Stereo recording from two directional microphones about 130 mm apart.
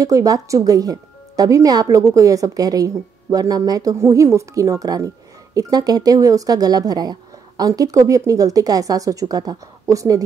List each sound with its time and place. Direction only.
0.0 s speech: 25° right (ahead or behind)